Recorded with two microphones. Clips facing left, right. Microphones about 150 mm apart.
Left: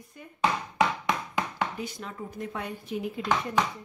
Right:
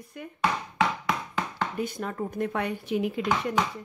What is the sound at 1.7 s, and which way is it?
Speech, 55° right (ahead or behind).